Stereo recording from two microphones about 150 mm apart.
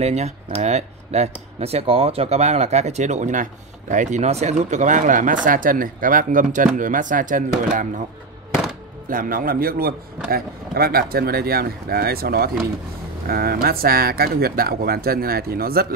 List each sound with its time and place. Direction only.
0.0 s speech: 45° right (ahead or behind)
9.1 s a man's voice: 70° right (ahead or behind); by 15.9 s 90° right